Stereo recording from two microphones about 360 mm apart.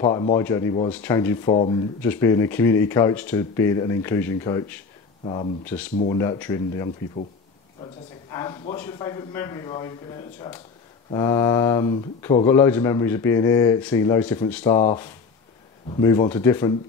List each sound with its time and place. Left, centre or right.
0.0 s speech: centre
5.7 s speech: centre